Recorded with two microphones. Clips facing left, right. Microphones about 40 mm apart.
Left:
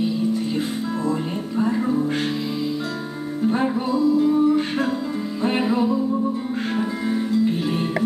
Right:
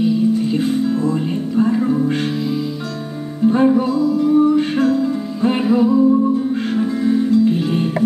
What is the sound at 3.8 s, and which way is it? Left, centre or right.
Music, centre.